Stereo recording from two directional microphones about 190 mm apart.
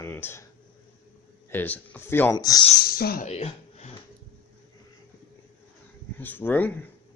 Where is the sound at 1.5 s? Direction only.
10° left (ahead or behind).